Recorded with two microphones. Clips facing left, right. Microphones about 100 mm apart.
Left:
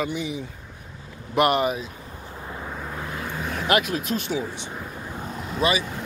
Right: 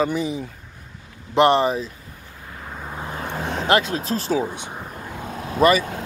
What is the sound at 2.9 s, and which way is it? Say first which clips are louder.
Vehicle: right 5 dB; 25° right (ahead or behind).